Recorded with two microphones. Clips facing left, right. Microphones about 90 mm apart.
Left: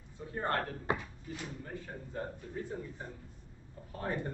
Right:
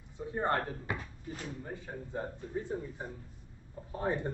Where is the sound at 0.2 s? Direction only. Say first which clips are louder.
Right 3 dB; 20° right (ahead or behind).